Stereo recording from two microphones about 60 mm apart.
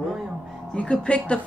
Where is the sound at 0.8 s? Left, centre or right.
Centre.